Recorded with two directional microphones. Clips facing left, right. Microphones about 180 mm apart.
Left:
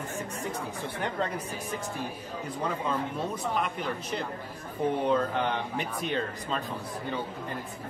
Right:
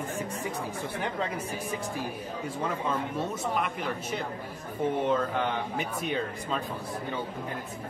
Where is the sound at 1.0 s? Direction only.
5° right (ahead or behind).